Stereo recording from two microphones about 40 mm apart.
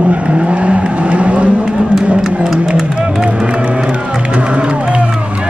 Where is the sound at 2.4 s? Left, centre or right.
Centre.